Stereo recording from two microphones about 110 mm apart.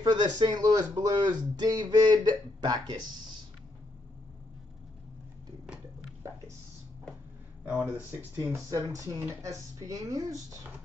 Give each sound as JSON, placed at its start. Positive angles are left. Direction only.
{"t": 0.0, "sound": "speech", "side_deg": -45}
{"t": 7.7, "sound": "speech", "side_deg": -20}
{"t": 8.4, "sound": "speech", "side_deg": -30}